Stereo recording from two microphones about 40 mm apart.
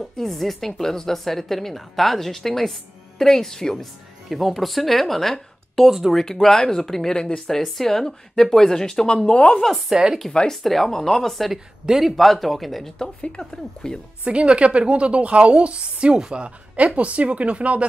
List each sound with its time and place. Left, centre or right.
0.2 s a woman's voice: centre
4.3 s speech: centre
5.9 s speech: centre
6.1 s a woman's voice: centre
9.6 s speech: centre
13.0 s a woman's voice: centre
14.2 s a woman's voice: right